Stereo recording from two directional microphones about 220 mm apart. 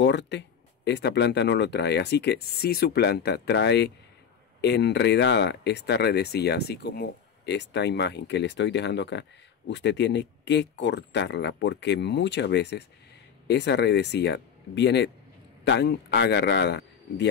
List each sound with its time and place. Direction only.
0.0 s speech: 50° left (ahead or behind)